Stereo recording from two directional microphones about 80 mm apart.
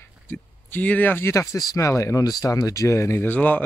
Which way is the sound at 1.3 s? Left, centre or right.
Left.